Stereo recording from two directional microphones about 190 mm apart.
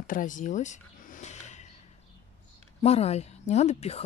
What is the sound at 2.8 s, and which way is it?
Speech, 35° left (ahead or behind).